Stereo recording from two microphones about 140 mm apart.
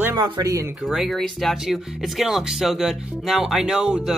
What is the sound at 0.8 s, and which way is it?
Speech, centre (ahead or behind).